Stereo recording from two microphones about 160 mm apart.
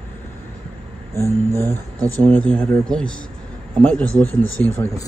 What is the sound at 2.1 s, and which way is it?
Speech, 10° left (ahead or behind).